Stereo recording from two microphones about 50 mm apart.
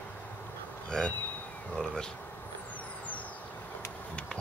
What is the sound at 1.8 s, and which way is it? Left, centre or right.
Insect, left.